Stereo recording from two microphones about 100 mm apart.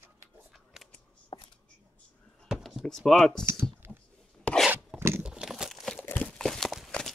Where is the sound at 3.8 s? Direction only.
20° right (ahead or behind).